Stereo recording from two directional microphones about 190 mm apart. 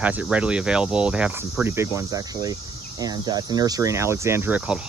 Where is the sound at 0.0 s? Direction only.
5° right (ahead or behind).